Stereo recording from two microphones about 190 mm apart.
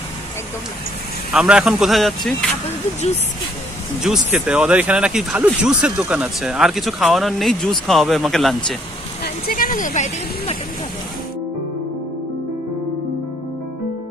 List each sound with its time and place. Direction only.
1.3 s speech: 5° right (ahead or behind)
4.0 s speech: 5° right (ahead or behind)
9.2 s speech: 50° left (ahead or behind)